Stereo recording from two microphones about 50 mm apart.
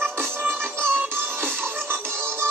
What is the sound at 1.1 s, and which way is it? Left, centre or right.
Music, right.